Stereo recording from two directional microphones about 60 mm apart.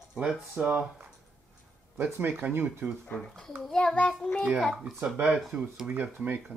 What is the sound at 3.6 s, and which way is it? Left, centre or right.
Speech, centre.